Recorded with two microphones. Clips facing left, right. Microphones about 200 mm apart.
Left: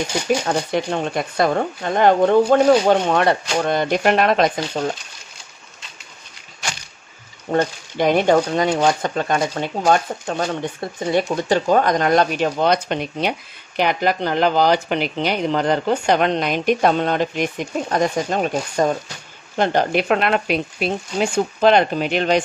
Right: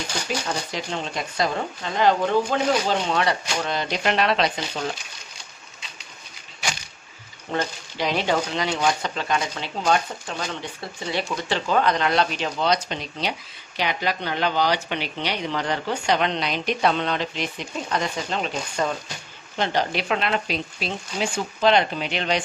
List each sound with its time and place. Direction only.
0.5 s speech: 55° left (ahead or behind)
7.5 s speech: 50° left (ahead or behind)